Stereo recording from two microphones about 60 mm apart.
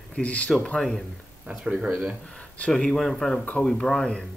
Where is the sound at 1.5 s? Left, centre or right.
Centre.